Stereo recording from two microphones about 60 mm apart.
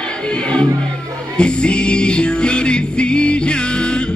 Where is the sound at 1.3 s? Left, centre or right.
Centre.